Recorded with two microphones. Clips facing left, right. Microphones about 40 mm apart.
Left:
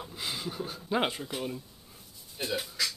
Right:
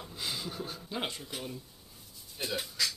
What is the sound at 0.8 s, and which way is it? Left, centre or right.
Speech, left.